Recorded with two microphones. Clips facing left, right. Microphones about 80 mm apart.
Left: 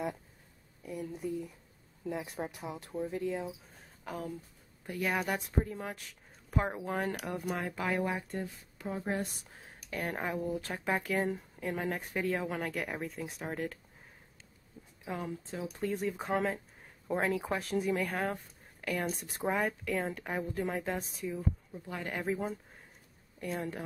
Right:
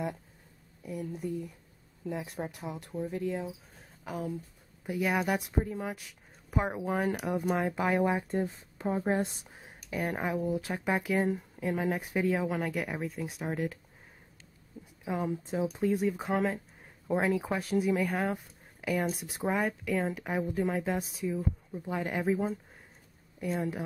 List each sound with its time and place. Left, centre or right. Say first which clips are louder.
0.8 s speech: right 2 dB; centre; by 9.5 s right
9.5 s speech: right 3 dB; centre
15.0 s speech: right 6 dB; centre
21.8 s speech: right 6 dB; centre
22.1 s speech: right 4 dB; centre